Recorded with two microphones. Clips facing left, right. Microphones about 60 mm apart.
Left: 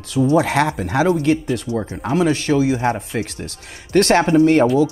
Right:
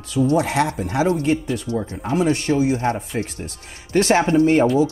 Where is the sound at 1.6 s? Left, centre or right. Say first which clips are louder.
Left 2 dB; left.